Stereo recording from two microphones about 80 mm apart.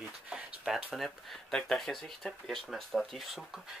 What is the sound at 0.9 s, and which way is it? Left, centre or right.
Speech, centre.